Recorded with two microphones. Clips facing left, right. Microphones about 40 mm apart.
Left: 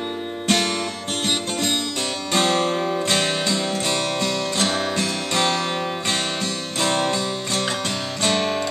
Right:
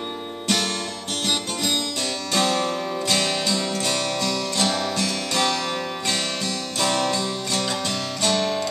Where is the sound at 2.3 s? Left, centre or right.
Left.